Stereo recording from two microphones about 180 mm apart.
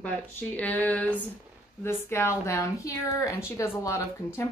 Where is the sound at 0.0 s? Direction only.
10° left (ahead or behind).